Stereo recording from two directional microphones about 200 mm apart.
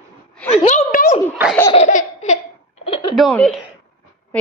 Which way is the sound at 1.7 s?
35° left (ahead or behind).